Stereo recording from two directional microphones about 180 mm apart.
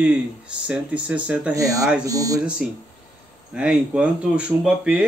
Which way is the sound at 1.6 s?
20° right (ahead or behind).